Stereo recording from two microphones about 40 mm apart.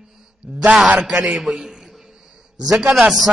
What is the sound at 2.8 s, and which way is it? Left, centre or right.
Speech, centre.